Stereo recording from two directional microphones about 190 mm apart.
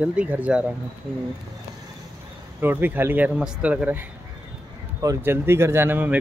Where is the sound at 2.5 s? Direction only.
10° right (ahead or behind).